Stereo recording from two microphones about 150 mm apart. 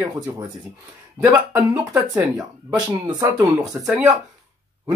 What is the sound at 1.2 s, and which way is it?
Speech, 15° right (ahead or behind).